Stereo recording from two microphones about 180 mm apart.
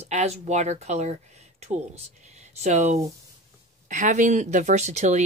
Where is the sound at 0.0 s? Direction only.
40° right (ahead or behind).